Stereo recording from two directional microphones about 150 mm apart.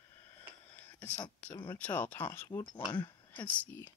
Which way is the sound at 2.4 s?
25° left (ahead or behind).